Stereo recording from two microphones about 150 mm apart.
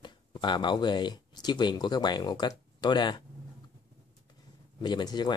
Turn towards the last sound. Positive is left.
turn(degrees=30)  # may be behind; listen again after turning